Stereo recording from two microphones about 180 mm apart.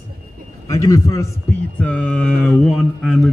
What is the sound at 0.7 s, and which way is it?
Speech, 15° left (ahead or behind).